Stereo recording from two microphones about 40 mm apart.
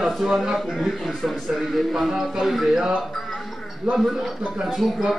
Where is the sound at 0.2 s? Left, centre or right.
Centre.